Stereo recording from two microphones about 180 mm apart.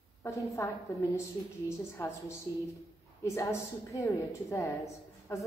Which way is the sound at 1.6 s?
15° left (ahead or behind).